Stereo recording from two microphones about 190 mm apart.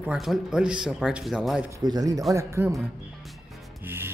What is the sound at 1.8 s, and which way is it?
Speech, 20° right (ahead or behind).